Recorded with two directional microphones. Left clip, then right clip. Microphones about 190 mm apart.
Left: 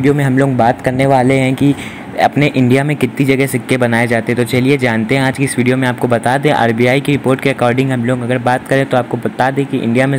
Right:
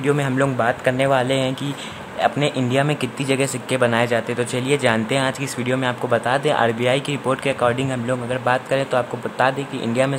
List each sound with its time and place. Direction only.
0.0 s speech: 15° left (ahead or behind)